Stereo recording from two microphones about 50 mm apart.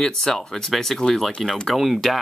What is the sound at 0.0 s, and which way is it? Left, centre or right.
Speech, centre.